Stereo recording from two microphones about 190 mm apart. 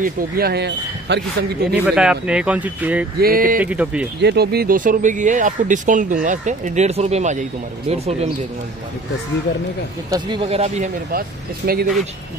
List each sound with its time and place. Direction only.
0.0 s speech: 55° right (ahead or behind)
1.8 s speech: 5° right (ahead or behind)
3.2 s speech: 50° right (ahead or behind)
3.6 s speech: 5° right (ahead or behind)
4.2 s speech: 60° right (ahead or behind); by 8.3 s 35° right (ahead or behind)
10.1 s speech: 25° right (ahead or behind)
11.1 s speech: 50° right (ahead or behind)